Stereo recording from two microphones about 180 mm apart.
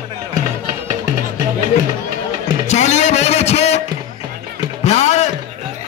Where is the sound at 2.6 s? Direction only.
40° left (ahead or behind).